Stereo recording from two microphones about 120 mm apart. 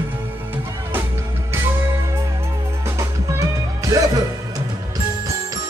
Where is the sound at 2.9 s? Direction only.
25° right (ahead or behind).